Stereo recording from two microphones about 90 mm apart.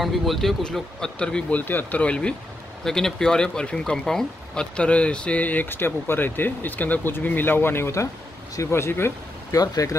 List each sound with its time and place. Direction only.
0.0 s speech: centre (ahead or behind); by 9.1 s 25° left (ahead or behind)
9.5 s speech: 40° left (ahead or behind)